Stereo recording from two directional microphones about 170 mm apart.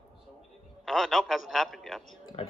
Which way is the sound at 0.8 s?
Centre (ahead or behind).